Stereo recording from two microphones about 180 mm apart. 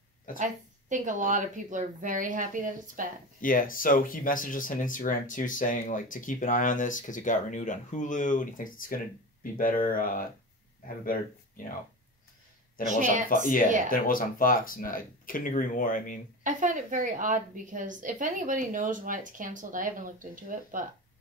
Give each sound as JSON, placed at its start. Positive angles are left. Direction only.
{"t": 0.4, "sound": "a woman's voice", "side_deg": -45}
{"t": 3.3, "sound": "speech", "side_deg": 50}
{"t": 12.8, "sound": "a woman's voice", "side_deg": -45}
{"t": 13.8, "sound": "speech", "side_deg": 50}
{"t": 16.4, "sound": "a woman's voice", "side_deg": -45}